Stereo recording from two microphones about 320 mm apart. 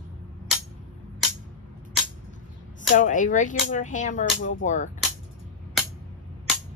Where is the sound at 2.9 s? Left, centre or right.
Left.